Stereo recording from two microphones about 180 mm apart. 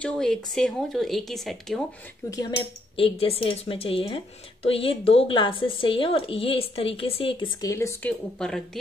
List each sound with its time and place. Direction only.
0.0 s speech: 5° left (ahead or behind)
2.2 s speech: 20° left (ahead or behind)
3.0 s a woman's voice: 30° left (ahead or behind)
7.7 s speech: 15° left (ahead or behind)
8.4 s speech: 5° left (ahead or behind)